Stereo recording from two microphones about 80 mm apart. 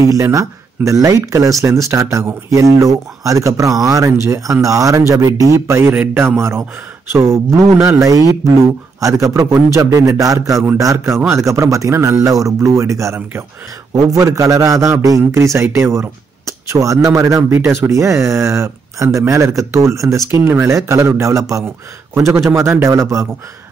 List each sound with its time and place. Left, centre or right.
0.1 s a man's voice: right